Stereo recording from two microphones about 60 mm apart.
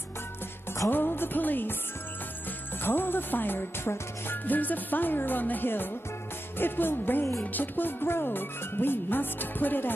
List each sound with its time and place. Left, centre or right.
0.8 s music: left
2.8 s speech: left